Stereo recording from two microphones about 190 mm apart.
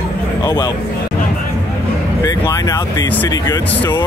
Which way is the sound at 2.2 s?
20° left (ahead or behind).